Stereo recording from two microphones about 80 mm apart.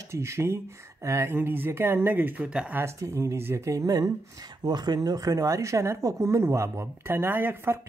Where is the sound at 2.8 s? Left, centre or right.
Right.